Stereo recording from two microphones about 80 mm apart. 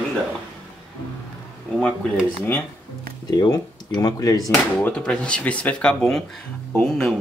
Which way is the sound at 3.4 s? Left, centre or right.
Left.